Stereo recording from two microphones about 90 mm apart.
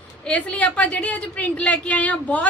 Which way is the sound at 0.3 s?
15° left (ahead or behind).